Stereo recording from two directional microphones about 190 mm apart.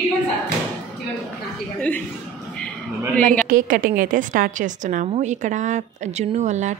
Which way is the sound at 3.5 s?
45° right (ahead or behind).